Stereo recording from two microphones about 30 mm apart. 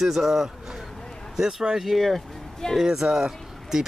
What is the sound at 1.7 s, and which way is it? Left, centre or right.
Speech, centre.